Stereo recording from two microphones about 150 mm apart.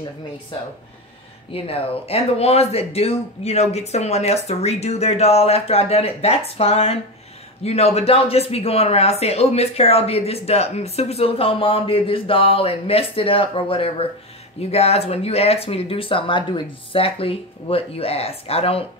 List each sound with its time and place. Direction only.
1.5 s speech: 40° left (ahead or behind)